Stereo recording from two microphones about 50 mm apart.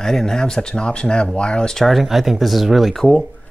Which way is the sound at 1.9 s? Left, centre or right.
Centre.